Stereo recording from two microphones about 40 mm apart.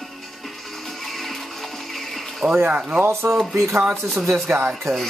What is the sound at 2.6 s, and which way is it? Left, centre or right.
Speech, right.